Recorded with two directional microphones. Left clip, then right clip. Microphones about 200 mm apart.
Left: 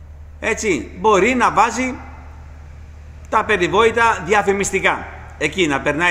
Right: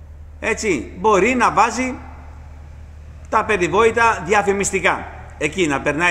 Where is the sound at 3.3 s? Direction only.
Centre (ahead or behind).